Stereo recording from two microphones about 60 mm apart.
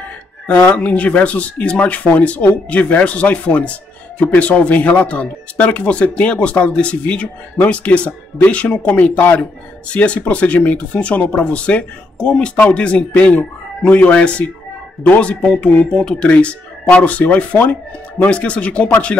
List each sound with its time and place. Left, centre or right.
0.7 s speech: left